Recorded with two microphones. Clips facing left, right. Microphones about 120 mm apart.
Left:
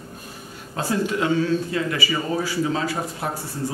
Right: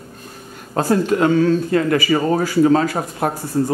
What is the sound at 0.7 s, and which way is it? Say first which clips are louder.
Speech: right 7 dB; 50° right (ahead or behind).